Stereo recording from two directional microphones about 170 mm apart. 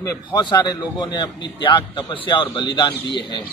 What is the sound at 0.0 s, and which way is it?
A man's voice, 20° left (ahead or behind).